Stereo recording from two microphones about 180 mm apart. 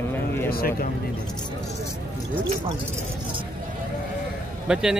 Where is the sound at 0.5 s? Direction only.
55° left (ahead or behind).